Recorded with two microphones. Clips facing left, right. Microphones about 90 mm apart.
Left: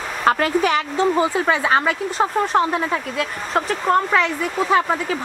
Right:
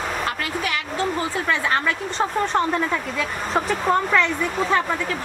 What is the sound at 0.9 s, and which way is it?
Speech, 20° left (ahead or behind).